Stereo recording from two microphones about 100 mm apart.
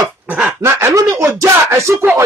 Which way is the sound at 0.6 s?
30° right (ahead or behind).